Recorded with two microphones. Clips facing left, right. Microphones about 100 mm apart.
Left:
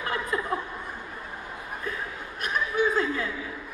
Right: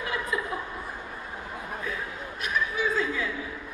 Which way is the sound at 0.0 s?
45° left (ahead or behind).